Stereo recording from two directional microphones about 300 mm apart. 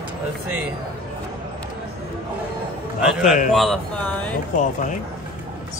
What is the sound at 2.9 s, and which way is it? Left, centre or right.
A man's voice, centre.